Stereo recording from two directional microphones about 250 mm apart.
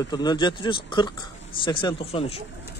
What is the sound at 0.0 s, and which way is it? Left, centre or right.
Speech, centre.